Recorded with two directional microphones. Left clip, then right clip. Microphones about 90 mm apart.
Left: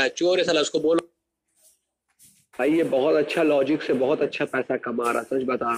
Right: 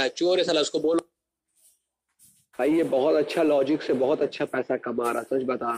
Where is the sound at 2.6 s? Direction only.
35° right (ahead or behind).